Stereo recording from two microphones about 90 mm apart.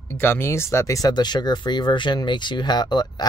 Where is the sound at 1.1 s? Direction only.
50° left (ahead or behind).